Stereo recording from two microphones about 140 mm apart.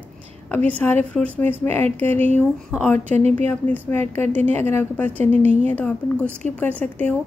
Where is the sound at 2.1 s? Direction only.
55° right (ahead or behind).